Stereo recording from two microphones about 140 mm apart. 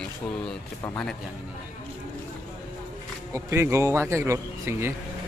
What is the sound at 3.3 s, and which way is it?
Speech, 20° right (ahead or behind).